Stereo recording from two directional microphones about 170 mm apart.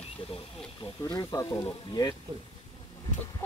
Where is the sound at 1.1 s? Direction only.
15° left (ahead or behind).